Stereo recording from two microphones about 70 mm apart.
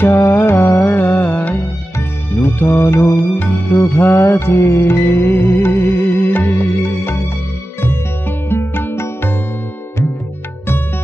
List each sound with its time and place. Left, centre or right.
0.0 s music: left
8.5 s music: left